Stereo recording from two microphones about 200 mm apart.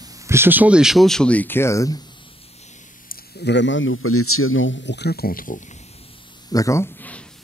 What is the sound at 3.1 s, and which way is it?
A man's voice, 55° left (ahead or behind).